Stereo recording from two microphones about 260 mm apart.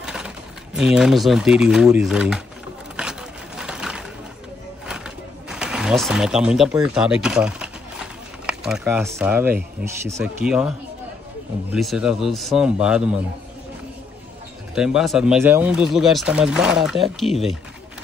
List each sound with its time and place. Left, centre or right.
0.0 s a sound: centre
0.7 s speech: centre
3.0 s a sound: centre
4.8 s pigeon: centre
10.0 s speech: centre
11.7 s speech: centre
14.8 s speech: centre